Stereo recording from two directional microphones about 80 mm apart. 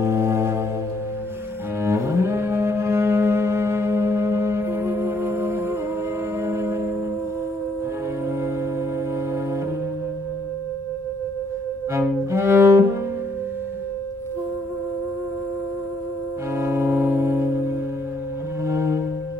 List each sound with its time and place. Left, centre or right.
0.0 s music: right
1.8 s cello: right
6.4 s music: right
12.3 s cello: right
16.5 s music: right
18.7 s cello: right